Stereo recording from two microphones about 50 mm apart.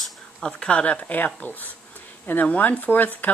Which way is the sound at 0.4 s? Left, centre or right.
Centre.